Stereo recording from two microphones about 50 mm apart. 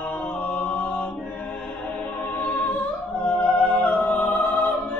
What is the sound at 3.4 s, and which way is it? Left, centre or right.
Music, left.